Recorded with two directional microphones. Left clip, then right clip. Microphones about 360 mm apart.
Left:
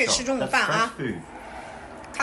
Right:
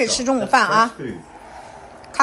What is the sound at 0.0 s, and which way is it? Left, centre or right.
Speech, centre.